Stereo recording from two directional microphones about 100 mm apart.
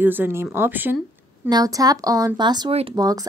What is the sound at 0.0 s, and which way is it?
Speech, 20° right (ahead or behind).